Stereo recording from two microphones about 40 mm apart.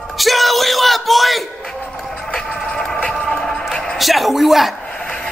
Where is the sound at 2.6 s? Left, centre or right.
Left.